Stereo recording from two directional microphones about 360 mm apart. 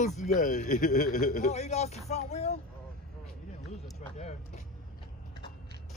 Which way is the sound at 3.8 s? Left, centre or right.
Centre.